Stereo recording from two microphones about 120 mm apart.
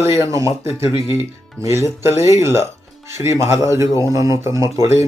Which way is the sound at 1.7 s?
20° right (ahead or behind).